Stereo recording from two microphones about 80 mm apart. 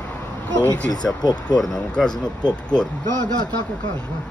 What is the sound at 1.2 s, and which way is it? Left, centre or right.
Speech, left.